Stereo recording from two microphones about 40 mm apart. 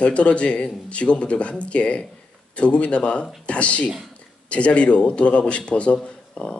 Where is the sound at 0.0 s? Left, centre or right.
Left.